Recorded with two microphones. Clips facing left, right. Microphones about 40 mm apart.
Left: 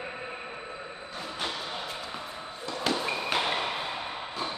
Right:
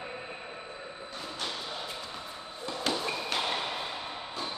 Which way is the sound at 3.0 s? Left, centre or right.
Centre.